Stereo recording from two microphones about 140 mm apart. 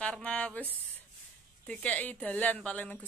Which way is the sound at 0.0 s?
10° left (ahead or behind).